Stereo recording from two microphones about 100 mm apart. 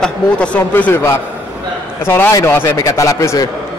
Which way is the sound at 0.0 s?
10° left (ahead or behind).